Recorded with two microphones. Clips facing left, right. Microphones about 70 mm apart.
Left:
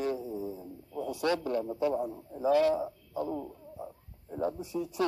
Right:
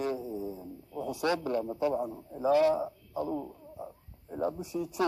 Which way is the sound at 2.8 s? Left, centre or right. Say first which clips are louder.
Even; centre.